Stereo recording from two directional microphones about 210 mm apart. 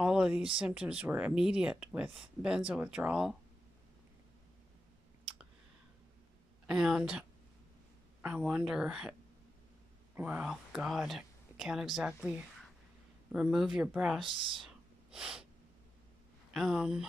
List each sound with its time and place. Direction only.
0.0 s a sound: 5° right (ahead or behind)
0.6 s speech: 5° right (ahead or behind)
6.7 s speech: 5° right (ahead or behind)
10.1 s speech: 5° right (ahead or behind)
14.2 s speech: 25° right (ahead or behind)
14.6 s snort: 5° right (ahead or behind)
16.5 s speech: centre (ahead or behind)